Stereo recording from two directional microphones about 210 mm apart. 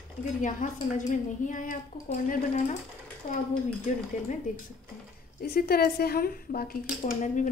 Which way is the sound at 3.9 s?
35° left (ahead or behind).